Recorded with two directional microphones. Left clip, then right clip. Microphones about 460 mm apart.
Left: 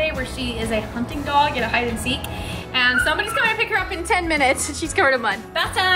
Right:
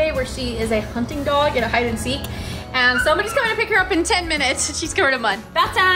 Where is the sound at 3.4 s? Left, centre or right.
Centre.